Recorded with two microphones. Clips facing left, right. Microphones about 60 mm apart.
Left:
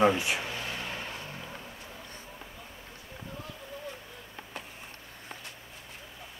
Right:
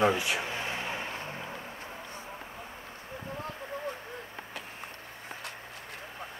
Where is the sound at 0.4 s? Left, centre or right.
Right.